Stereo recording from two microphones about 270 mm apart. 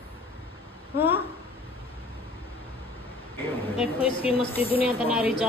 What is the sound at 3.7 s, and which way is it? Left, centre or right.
A woman's voice, left.